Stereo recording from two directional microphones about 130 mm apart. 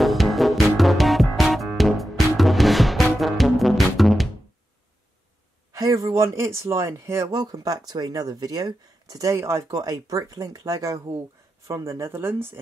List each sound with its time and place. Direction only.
0.0 s music: centre (ahead or behind)
5.7 s speech: 25° right (ahead or behind)